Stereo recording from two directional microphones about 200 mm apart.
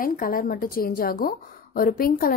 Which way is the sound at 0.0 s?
45° left (ahead or behind).